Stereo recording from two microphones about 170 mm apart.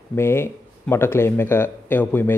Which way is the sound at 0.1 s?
15° left (ahead or behind).